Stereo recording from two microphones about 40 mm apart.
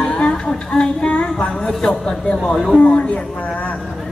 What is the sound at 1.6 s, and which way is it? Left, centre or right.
Speech, centre.